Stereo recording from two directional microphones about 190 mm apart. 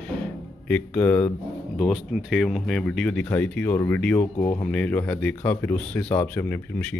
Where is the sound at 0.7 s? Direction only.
10° left (ahead or behind).